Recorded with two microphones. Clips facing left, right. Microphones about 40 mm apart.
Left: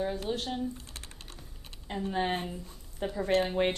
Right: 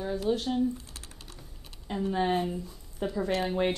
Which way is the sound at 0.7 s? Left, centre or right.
Left.